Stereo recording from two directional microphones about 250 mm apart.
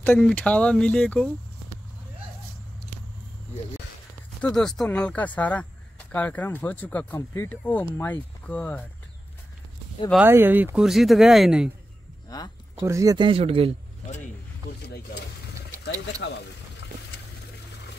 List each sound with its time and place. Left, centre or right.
0.0 s speech: centre
4.4 s speech: centre
10.2 s speech: centre
12.3 s speech: centre
12.7 s speech: centre
15.8 s speech: left